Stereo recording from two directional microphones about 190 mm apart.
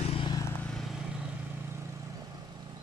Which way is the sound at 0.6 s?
Centre (ahead or behind).